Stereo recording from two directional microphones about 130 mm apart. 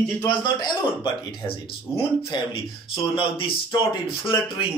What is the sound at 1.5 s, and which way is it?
A man's voice, 45° left (ahead or behind).